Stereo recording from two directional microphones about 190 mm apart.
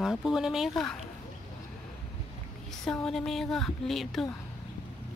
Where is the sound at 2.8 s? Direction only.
5° left (ahead or behind).